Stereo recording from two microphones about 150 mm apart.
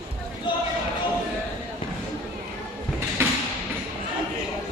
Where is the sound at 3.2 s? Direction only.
15° right (ahead or behind).